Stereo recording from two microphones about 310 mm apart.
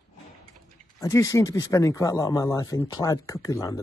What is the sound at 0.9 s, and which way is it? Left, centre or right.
Speech, centre.